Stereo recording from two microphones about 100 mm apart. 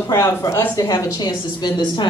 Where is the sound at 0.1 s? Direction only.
30° left (ahead or behind).